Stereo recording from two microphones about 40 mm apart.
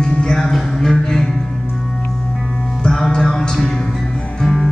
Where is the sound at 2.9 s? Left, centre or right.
Centre.